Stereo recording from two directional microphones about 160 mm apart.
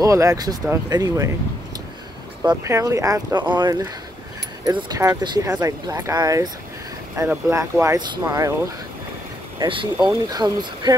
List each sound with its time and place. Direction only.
0.0 s speech: 20° right (ahead or behind)
2.4 s speech: 20° right (ahead or behind)
9.6 s speech: 30° right (ahead or behind)